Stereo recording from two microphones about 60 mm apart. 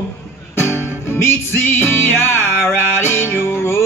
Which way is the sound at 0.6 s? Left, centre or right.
Left.